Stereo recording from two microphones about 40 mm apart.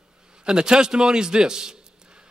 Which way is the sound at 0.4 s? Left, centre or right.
Right.